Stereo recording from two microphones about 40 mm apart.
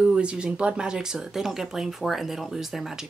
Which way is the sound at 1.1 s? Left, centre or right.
Centre.